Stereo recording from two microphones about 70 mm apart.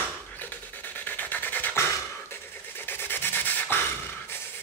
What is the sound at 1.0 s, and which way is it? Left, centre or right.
Music, left.